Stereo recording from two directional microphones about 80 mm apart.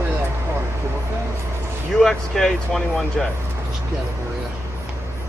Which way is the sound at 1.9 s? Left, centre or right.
Centre.